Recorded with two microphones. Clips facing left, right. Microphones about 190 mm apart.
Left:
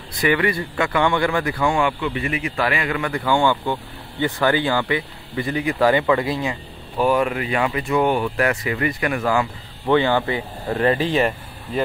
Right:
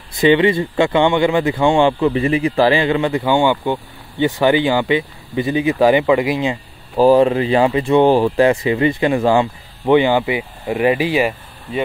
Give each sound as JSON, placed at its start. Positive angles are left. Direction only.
{"t": 0.2, "sound": "speech", "side_deg": -25}